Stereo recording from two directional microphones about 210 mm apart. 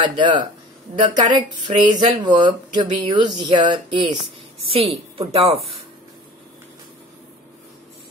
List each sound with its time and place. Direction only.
0.0 s speech: 20° right (ahead or behind)